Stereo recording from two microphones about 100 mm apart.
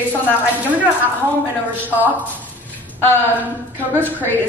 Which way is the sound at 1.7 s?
20° right (ahead or behind).